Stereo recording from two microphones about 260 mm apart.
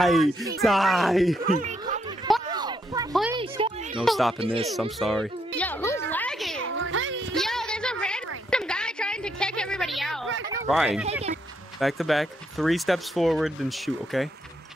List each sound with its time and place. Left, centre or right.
0.0 s speech: centre
1.4 s speech: right
2.5 s music: centre
3.3 s a sound: centre
4.0 s speech: centre
4.4 s speech: right
4.9 s speech: centre
5.6 s music: centre
6.6 s meow: right
7.3 s a sound: centre
10.7 s speech: centre